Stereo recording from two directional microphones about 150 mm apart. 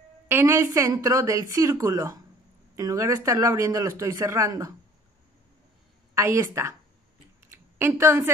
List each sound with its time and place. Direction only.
0.3 s speech: 15° right (ahead or behind)
6.1 s speech: 20° right (ahead or behind)